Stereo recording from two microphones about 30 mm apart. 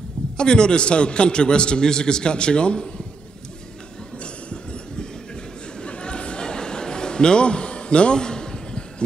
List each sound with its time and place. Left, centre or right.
0.4 s a man's voice: left
4.2 s train: left
5.8 s a sound: left